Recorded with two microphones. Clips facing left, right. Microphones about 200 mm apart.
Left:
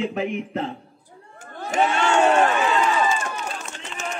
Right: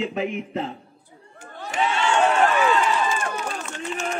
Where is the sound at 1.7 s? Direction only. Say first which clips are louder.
Left 3 dB; 50° left (ahead or behind).